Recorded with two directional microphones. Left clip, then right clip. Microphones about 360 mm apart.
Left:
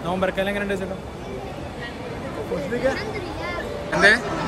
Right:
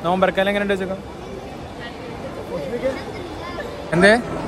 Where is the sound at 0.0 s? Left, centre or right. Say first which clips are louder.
Right 5 dB; right.